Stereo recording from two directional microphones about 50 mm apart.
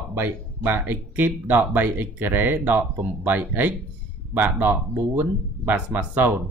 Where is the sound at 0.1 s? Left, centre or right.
Right.